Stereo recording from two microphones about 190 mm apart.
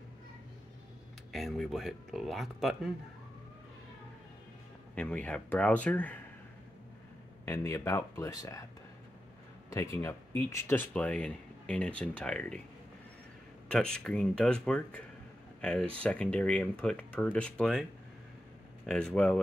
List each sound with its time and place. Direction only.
1.3 s speech: centre (ahead or behind)
4.9 s speech: 5° left (ahead or behind)
7.4 s speech: 15° left (ahead or behind)
9.7 s speech: 15° left (ahead or behind)
13.7 s speech: 5° left (ahead or behind)
18.9 s speech: 5° left (ahead or behind)